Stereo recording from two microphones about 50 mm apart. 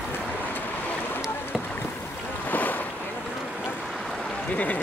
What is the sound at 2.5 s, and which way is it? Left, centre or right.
Boat, left.